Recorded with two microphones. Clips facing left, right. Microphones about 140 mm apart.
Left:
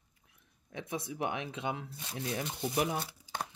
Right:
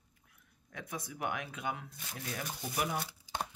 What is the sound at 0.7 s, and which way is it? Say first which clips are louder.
Speech: left 5 dB; 25° left (ahead or behind).